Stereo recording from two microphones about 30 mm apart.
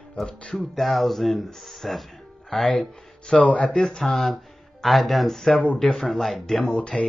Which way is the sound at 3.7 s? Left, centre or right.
Left.